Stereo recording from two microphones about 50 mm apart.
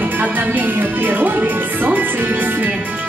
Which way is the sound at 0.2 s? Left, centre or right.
Right.